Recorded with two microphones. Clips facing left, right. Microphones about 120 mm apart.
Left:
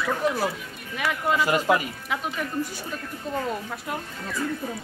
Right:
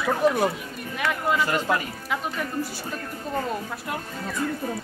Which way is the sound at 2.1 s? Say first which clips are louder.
Even; centre (ahead or behind).